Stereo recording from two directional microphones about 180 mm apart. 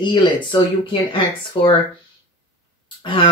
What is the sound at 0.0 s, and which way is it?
Speech, 25° left (ahead or behind).